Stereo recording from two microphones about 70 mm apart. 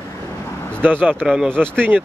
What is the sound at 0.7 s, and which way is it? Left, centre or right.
Speech, right.